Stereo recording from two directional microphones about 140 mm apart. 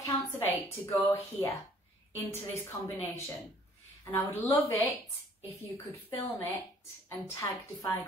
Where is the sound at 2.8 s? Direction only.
20° left (ahead or behind).